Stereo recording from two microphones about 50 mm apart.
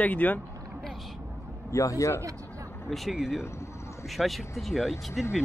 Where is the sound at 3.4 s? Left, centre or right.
Left.